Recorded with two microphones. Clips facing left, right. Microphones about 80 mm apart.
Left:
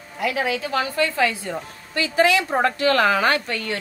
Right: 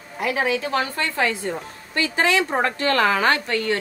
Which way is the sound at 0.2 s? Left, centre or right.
Right.